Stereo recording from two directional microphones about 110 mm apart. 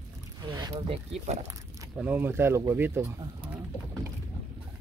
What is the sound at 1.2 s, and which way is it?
Speech, 90° right.